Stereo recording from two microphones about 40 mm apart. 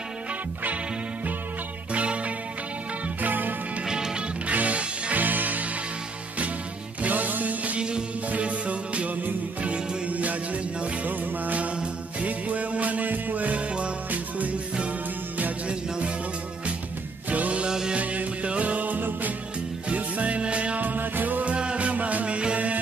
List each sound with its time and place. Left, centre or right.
2.0 s music: right
3.2 s music: right
3.8 s music: centre
4.5 s music: right
5.2 s music: right
7.0 s music: right
17.3 s music: right
17.6 s music: centre
17.9 s music: right
19.9 s music: right
21.5 s music: right